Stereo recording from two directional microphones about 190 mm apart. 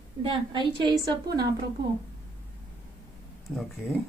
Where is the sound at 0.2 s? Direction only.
25° right (ahead or behind).